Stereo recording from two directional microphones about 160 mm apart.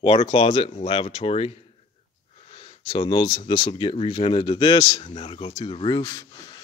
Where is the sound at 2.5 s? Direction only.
35° left (ahead or behind).